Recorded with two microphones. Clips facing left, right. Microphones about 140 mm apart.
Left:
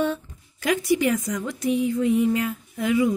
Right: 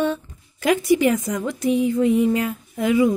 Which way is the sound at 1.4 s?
90° right.